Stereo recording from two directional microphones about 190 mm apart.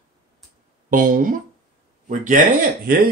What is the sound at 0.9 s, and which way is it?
Speech, 45° right (ahead or behind).